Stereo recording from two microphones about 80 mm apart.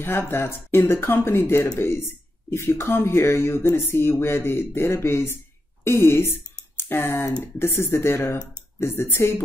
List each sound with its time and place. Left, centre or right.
0.0 s speech: left